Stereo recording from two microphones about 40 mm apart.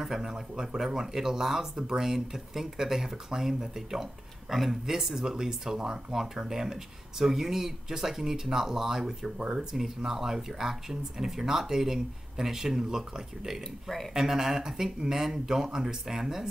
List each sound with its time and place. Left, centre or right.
0.0 s speech: centre